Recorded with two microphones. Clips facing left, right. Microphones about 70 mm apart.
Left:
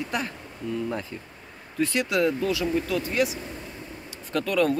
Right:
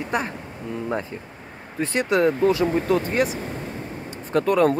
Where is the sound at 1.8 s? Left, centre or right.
Right.